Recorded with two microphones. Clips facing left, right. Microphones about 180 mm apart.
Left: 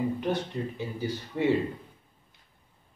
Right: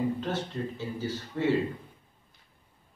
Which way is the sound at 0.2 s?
15° left (ahead or behind).